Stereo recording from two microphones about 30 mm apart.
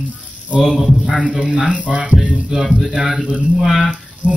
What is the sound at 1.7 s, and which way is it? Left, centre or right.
Music, right.